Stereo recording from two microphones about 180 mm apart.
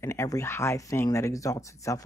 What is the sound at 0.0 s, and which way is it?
Speech, 15° left (ahead or behind).